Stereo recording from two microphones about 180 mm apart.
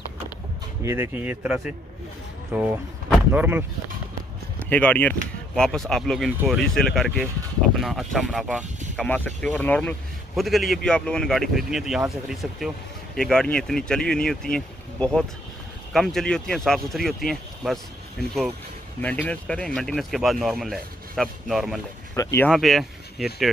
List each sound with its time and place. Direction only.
0.8 s speech: 15° right (ahead or behind)
4.6 s a man's voice: 10° left (ahead or behind)
8.9 s a man's voice: 5° left (ahead or behind)
18.9 s a man's voice: 10° left (ahead or behind)
22.1 s speech: 15° left (ahead or behind)
22.5 s a man's voice: centre (ahead or behind)